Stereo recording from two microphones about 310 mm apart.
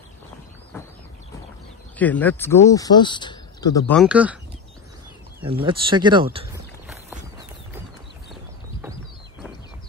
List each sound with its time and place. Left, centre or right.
2.0 s speech: centre
5.5 s speech: centre